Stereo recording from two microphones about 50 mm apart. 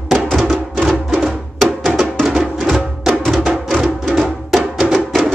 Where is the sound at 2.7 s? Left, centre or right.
Centre.